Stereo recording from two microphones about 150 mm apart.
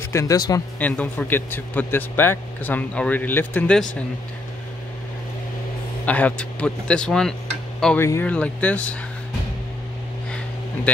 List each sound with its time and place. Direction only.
0.1 s speech: 20° left (ahead or behind)
0.7 s speech: 10° left (ahead or behind)
6.0 s speech: 10° left (ahead or behind)